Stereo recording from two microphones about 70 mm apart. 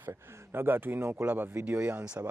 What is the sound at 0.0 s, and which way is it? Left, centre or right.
Speech, right.